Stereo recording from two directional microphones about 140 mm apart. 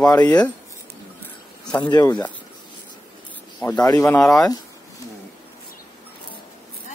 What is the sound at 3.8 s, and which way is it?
Speech, 25° left (ahead or behind).